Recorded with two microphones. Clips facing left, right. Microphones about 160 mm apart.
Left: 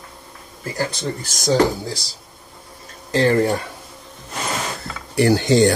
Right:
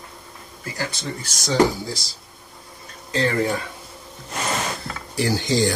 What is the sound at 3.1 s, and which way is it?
Speech, 50° left (ahead or behind).